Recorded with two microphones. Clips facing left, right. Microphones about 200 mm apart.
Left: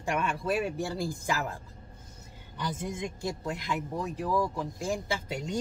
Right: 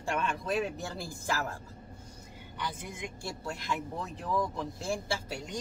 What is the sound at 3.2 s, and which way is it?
Speech, 20° left (ahead or behind).